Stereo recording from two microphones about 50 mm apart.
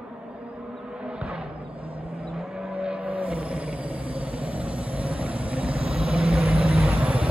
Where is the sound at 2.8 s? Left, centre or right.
Right.